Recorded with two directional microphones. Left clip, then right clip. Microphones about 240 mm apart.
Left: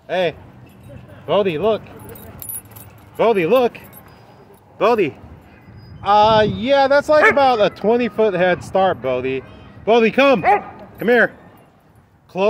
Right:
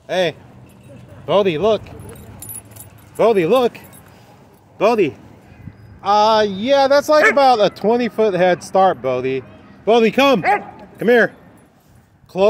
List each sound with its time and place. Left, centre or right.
0.0 s speech: right
3.2 s speech: centre
10.4 s bow-wow: centre
11.0 s speech: right
12.3 s speech: centre